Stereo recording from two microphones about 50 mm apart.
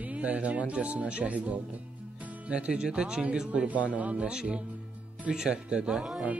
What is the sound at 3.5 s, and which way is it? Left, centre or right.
Music, right.